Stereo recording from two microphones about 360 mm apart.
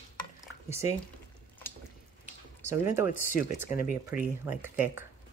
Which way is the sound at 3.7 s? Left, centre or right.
Left.